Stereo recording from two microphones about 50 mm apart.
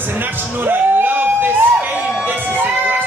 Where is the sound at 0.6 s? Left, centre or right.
Right.